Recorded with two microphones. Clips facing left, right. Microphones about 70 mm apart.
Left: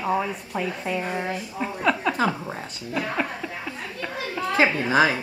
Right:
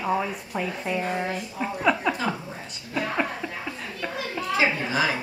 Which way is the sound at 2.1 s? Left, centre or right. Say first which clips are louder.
Left 4 dB; left.